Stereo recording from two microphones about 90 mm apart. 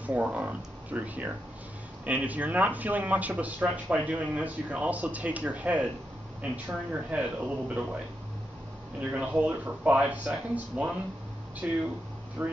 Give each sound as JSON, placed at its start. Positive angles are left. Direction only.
{"t": 0.0, "sound": "speech", "side_deg": -15}
{"t": 9.1, "sound": "speech", "side_deg": -15}